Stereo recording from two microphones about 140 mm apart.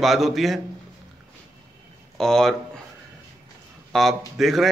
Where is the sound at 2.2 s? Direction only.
5° left (ahead or behind).